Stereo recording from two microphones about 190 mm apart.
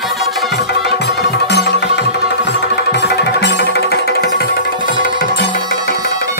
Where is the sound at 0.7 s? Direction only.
60° left (ahead or behind).